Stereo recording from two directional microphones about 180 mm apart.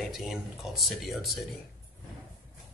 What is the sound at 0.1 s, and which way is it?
Speech, centre (ahead or behind).